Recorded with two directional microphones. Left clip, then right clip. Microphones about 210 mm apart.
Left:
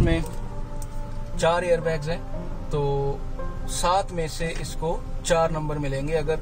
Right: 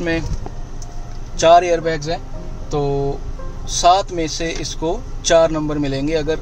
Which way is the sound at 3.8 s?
35° right (ahead or behind).